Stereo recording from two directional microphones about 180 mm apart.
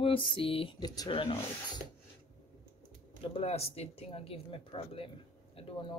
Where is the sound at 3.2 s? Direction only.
35° left (ahead or behind).